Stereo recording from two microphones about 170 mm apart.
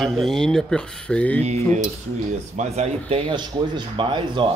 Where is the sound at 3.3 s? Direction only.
25° right (ahead or behind).